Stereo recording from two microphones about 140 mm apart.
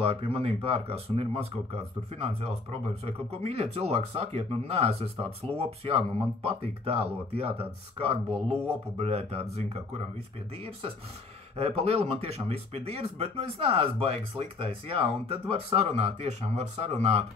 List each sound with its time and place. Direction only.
0.0 s speech: 40° right (ahead or behind)
11.5 s speech: 45° right (ahead or behind)